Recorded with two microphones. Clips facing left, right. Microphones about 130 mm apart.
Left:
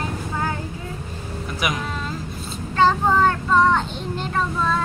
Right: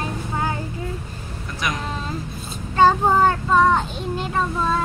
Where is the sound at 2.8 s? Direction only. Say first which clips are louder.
Right 2 dB; 10° right (ahead or behind).